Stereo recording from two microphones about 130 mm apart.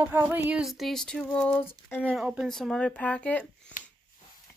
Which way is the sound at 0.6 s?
Centre (ahead or behind).